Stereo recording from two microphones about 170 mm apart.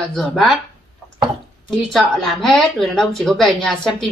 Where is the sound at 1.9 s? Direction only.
5° left (ahead or behind).